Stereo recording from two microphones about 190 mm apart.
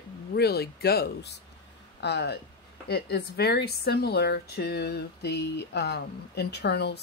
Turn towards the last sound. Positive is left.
turn(degrees=60)  # may be behind; listen again after turning